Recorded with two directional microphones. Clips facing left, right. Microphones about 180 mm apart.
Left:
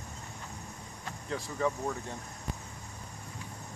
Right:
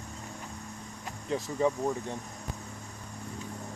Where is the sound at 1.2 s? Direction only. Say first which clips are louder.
Right 4 dB; 20° right (ahead or behind).